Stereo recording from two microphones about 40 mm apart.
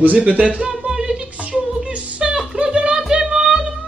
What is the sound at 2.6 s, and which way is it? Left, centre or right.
Music, right.